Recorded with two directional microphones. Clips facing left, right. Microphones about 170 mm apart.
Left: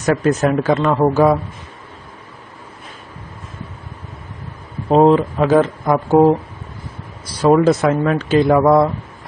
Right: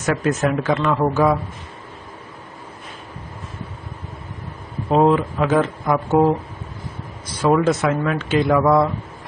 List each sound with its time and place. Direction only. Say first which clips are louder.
0.0 s speech: left 4 dB; 35° left (ahead or behind)
4.8 s speech: left 4 dB; 35° left (ahead or behind)
7.5 s speech: left 4 dB; 35° left (ahead or behind)